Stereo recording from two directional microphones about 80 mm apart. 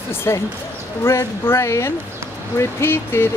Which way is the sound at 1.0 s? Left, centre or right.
Left.